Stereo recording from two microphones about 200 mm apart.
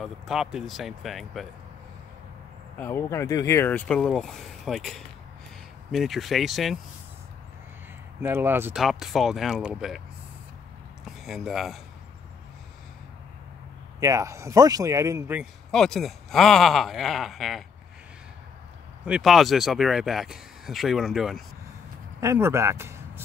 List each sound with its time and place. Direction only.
0.0 s speech: centre (ahead or behind)
2.8 s speech: 10° left (ahead or behind)
8.2 s speech: 10° right (ahead or behind)
8.8 s speech: centre (ahead or behind)
11.1 s speech: centre (ahead or behind)
13.9 s speech: 15° right (ahead or behind)
15.7 s speech: 5° left (ahead or behind)
19.0 s speech: centre (ahead or behind)
22.2 s speech: 15° right (ahead or behind)